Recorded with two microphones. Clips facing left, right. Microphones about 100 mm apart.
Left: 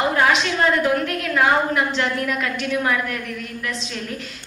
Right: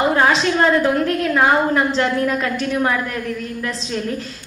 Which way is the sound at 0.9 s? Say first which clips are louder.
Right 4 dB; 30° right (ahead or behind).